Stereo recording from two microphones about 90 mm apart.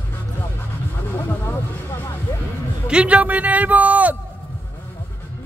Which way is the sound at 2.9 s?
15° right (ahead or behind).